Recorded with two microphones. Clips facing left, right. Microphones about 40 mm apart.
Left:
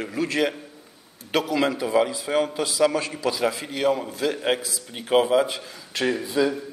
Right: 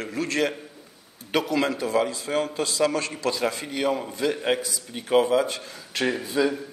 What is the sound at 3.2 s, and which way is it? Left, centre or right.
A man's voice, centre.